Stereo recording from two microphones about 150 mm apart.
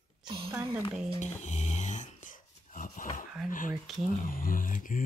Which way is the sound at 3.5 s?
65° left (ahead or behind).